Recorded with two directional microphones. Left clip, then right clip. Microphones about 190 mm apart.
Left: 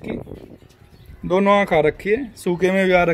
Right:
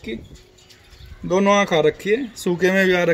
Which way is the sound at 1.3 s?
20° left (ahead or behind).